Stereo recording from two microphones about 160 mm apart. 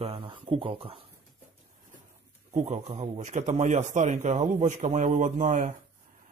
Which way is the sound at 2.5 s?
45° right (ahead or behind).